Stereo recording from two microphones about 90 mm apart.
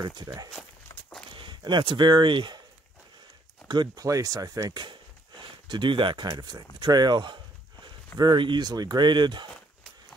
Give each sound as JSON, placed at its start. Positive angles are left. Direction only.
{"t": 0.0, "sound": "speech", "side_deg": -55}
{"t": 0.9, "sound": "walk", "side_deg": 40}
{"t": 1.3, "sound": "speech", "side_deg": -60}
{"t": 3.6, "sound": "speech", "side_deg": -55}
{"t": 4.0, "sound": "speech", "side_deg": -40}
{"t": 5.4, "sound": "speech", "side_deg": -60}